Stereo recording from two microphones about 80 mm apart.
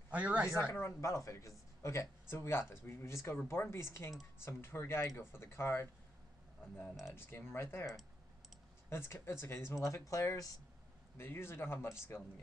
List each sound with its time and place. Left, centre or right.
0.1 s speech: centre
0.7 s speech: left
6.9 s speech: centre
7.2 s speech: left
8.9 s speech: left
11.1 s speech: left